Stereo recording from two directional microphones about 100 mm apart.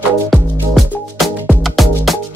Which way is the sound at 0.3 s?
Centre (ahead or behind).